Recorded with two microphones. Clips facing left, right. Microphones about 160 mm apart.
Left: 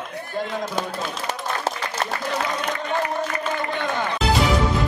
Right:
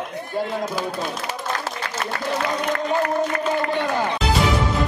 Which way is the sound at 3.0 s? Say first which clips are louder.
Right 3 dB; 65° right (ahead or behind).